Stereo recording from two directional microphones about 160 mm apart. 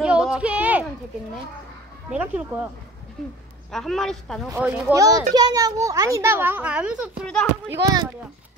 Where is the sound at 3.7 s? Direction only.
Centre (ahead or behind).